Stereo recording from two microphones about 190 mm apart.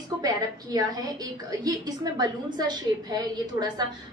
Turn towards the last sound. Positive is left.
turn(degrees=-20)  # may be behind; listen again after turning